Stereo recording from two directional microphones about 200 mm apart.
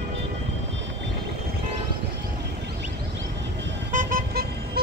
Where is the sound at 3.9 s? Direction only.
45° right (ahead or behind).